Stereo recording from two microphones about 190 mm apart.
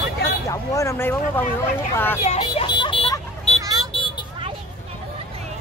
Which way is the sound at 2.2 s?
30° left (ahead or behind).